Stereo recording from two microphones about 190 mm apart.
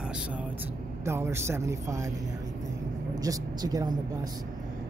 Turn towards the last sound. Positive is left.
turn(degrees=-20)  # may be behind; listen again after turning